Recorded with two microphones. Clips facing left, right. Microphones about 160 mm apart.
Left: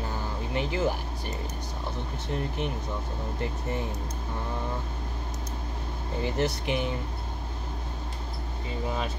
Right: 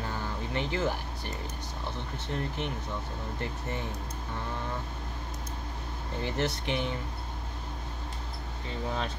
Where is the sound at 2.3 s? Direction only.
20° left (ahead or behind).